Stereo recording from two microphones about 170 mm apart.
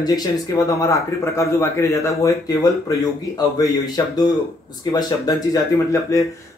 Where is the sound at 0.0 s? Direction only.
25° left (ahead or behind).